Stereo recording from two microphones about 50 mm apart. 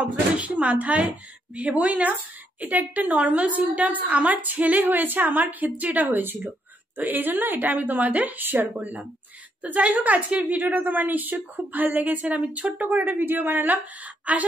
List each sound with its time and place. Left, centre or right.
0.0 s a woman's voice: right